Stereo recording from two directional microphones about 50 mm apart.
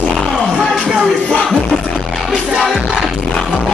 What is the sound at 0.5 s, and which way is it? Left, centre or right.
Speech, right.